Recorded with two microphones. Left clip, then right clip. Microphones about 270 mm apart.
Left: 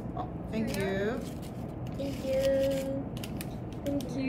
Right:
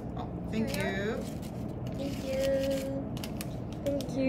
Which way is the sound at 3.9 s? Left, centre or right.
Centre.